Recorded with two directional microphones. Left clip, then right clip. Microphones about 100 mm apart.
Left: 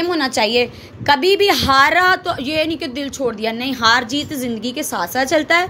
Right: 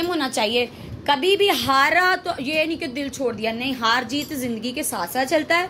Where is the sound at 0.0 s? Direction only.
40° left (ahead or behind).